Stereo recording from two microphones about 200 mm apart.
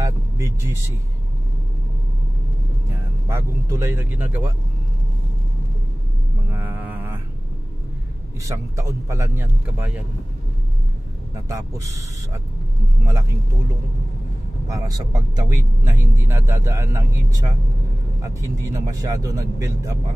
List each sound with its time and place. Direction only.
0.0 s vehicle: 15° right (ahead or behind)
3.3 s speech: 15° right (ahead or behind)
6.5 s mantra: 10° right (ahead or behind)
8.5 s speech: 15° right (ahead or behind)
14.7 s speech: 20° right (ahead or behind)